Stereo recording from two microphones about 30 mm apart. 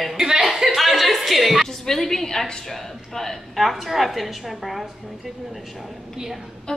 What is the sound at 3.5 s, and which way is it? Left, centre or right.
A woman's voice, centre.